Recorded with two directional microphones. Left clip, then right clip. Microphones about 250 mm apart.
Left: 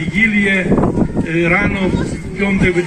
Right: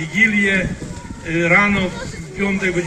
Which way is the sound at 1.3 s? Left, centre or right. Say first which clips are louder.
Right 2 dB; right.